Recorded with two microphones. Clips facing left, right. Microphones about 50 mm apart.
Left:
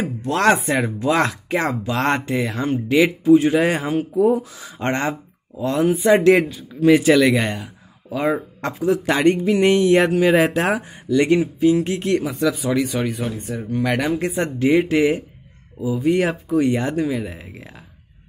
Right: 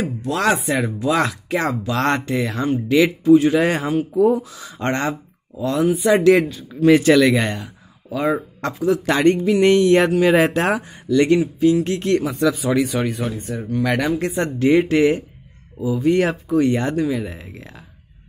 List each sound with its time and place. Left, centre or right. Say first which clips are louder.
0.2 s speech: left 3 dB; left
3.5 s speech: even; centre
4.4 s speech: even; left
5.6 s speech: even; left
6.8 s speech: right 1 dB; centre
8.1 s speech: even; left
9.1 s speech: right 1 dB; centre
10.2 s speech: right 1 dB; centre
10.9 s speech: right 1 dB; centre
12.3 s speech: right 1 dB; centre
13.8 s speech: right 1 dB; centre